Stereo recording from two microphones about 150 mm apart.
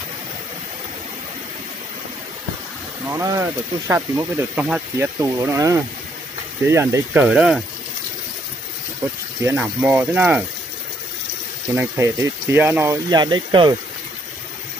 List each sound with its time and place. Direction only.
3.1 s speech: 20° right (ahead or behind)
7.2 s speech: 5° right (ahead or behind)
9.4 s speech: 15° right (ahead or behind)
11.7 s speech: 10° right (ahead or behind)
13.1 s speech: 30° right (ahead or behind)